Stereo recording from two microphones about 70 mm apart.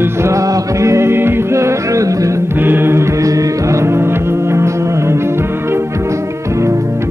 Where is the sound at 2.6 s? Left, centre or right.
Right.